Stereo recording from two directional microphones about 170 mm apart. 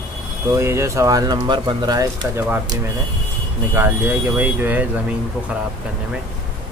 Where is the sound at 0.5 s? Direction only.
15° right (ahead or behind).